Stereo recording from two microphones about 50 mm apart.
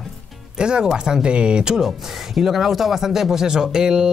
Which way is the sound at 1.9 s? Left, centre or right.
Centre.